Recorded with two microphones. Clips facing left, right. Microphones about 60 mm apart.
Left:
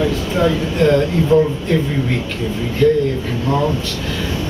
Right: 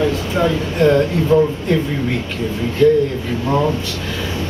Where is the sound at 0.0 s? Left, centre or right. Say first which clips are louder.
Even; centre.